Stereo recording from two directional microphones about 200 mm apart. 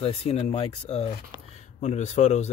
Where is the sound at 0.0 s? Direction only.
30° left (ahead or behind).